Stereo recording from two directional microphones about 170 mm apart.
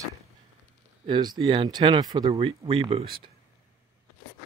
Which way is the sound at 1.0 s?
25° right (ahead or behind).